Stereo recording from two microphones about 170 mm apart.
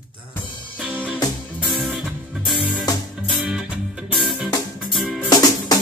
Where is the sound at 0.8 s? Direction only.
10° right (ahead or behind).